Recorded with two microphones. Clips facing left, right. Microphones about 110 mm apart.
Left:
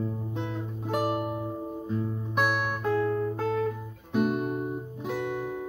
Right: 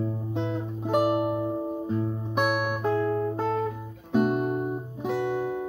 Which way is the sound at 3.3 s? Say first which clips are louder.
Right 1 dB; 20° right (ahead or behind).